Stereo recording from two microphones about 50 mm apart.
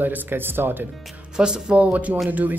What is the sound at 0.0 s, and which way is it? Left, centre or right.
Speech, right.